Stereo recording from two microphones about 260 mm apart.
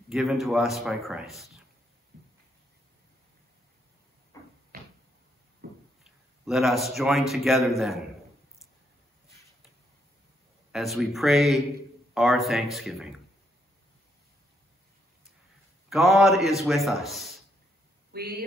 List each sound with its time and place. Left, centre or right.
0.1 s a man's voice: centre
5.6 s a sound: right
6.4 s a man's voice: centre
10.7 s a man's voice: centre
15.9 s a man's voice: centre
18.1 s speech: right